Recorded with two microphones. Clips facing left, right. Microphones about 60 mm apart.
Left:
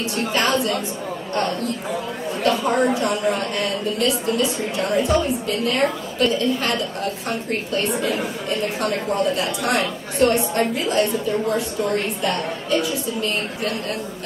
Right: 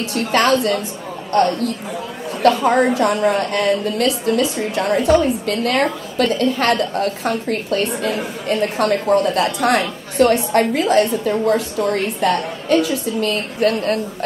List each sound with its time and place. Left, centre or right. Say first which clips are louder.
0.1 s a woman's voice: right 6 dB; right
2.4 s a woman's voice: right 5 dB; right